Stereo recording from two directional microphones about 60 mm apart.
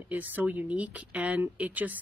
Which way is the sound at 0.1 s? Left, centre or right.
Right.